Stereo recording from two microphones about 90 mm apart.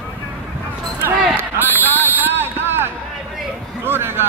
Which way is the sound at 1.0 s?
20° right (ahead or behind).